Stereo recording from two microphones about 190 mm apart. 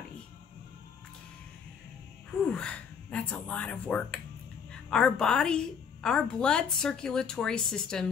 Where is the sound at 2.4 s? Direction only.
5° left (ahead or behind).